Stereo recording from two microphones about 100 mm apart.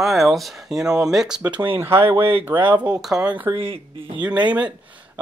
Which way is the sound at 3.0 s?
5° right (ahead or behind).